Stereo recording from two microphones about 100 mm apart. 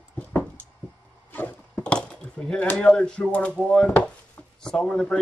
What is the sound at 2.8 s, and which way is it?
Speech, 5° left (ahead or behind).